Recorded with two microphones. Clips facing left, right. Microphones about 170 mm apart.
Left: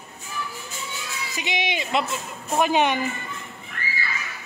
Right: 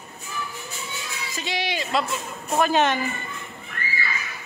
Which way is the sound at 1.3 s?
20° left (ahead or behind).